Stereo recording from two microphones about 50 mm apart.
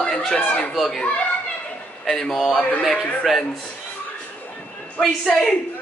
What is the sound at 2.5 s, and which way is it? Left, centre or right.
Speech, left.